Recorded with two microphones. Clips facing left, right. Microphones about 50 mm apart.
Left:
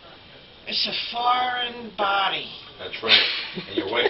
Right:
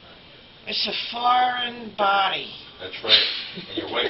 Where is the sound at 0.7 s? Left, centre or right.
Centre.